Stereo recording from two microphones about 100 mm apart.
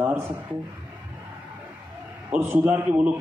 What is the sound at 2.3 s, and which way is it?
Speech, 20° right (ahead or behind).